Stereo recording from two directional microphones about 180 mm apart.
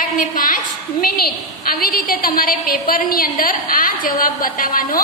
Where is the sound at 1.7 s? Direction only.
55° left (ahead or behind).